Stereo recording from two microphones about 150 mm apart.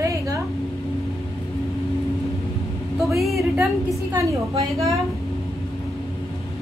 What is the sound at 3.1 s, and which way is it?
A woman's voice, 20° right (ahead or behind).